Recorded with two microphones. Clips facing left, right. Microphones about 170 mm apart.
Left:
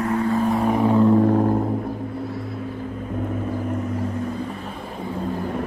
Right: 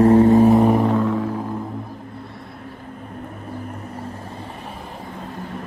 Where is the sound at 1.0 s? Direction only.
45° left (ahead or behind).